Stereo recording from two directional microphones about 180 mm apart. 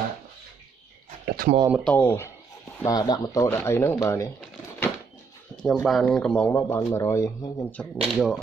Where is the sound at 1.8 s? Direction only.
10° left (ahead or behind).